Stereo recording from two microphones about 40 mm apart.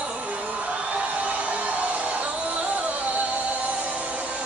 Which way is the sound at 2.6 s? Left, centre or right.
Right.